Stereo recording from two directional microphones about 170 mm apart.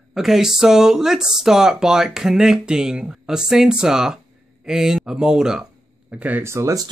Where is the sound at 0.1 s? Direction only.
Centre (ahead or behind).